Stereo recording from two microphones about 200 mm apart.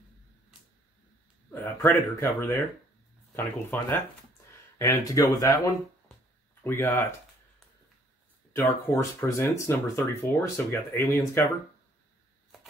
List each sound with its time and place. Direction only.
1.5 s speech: 10° left (ahead or behind)
8.5 s speech: 15° left (ahead or behind)